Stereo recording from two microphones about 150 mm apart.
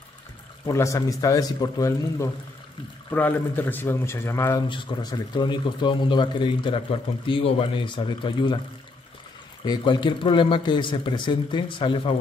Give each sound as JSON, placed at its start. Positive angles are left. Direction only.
{"t": 0.7, "sound": "a man's voice", "side_deg": 20}
{"t": 4.6, "sound": "speech", "side_deg": 30}
{"t": 9.7, "sound": "speech", "side_deg": 30}